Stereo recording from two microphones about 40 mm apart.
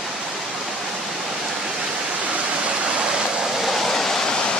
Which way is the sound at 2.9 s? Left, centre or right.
Right.